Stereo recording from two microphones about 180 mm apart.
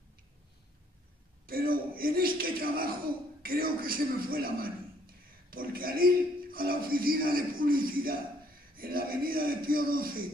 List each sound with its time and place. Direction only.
1.4 s a man's voice: 55° right (ahead or behind)